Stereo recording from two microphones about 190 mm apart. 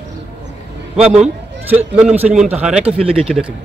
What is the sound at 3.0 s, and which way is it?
Speech, 30° right (ahead or behind).